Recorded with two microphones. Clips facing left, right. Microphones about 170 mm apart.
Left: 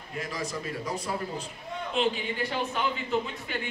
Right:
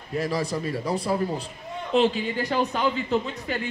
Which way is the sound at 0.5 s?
65° right (ahead or behind).